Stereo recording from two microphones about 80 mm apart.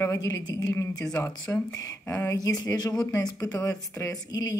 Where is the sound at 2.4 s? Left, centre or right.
Left.